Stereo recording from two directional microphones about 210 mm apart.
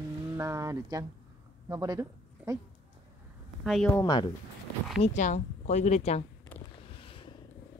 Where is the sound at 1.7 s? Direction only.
15° right (ahead or behind).